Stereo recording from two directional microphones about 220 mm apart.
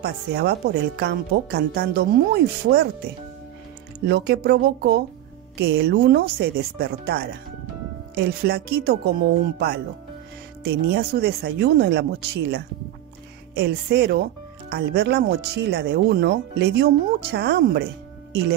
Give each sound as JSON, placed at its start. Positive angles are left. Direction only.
{"t": 0.0, "sound": "speech", "side_deg": -45}
{"t": 4.1, "sound": "speech", "side_deg": -45}
{"t": 10.6, "sound": "speech", "side_deg": -45}